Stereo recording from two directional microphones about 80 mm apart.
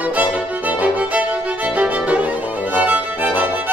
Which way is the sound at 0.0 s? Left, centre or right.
Centre.